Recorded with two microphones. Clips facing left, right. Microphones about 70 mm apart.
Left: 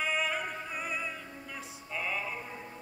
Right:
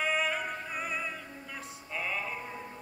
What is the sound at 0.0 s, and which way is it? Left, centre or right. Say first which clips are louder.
Opera: right 1 dB; centre.